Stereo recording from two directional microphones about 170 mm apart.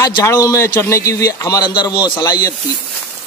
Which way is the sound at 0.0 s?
20° left (ahead or behind).